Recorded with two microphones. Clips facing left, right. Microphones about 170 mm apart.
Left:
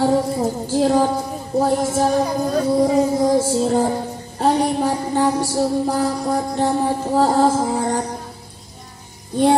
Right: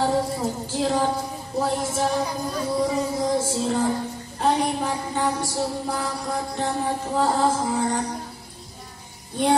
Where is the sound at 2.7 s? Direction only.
40° left (ahead or behind).